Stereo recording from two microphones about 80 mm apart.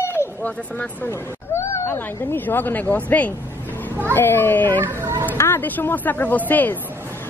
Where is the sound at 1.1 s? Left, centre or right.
Left.